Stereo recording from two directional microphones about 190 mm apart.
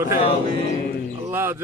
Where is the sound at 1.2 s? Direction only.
10° right (ahead or behind).